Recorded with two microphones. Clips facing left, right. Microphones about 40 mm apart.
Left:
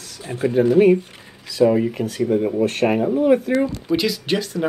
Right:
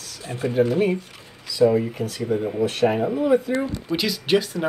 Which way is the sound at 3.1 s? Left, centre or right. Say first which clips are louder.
Left 3 dB; left.